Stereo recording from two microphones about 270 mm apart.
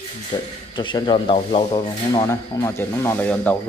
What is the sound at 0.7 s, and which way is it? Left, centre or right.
Speech, centre.